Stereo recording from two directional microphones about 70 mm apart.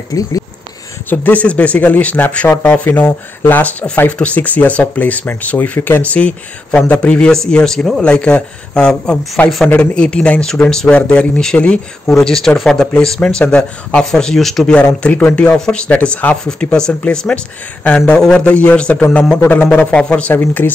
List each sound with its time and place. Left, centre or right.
0.1 s speech: left
1.1 s speech: left; by 8.0 s centre
8.0 s speech: centre
15.0 s speech: left